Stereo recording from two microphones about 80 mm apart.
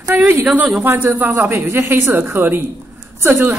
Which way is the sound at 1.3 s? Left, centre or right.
Right.